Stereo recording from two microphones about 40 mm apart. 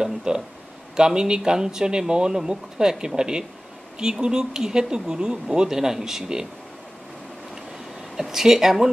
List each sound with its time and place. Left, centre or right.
0.0 s a sound: centre
0.9 s speech: centre
8.2 s speech: centre